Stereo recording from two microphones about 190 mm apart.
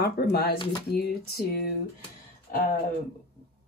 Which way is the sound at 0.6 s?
20° left (ahead or behind).